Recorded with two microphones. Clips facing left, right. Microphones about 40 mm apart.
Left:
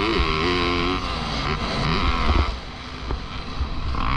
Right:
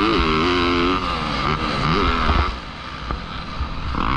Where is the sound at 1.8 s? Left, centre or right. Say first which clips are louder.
Right 5 dB; centre.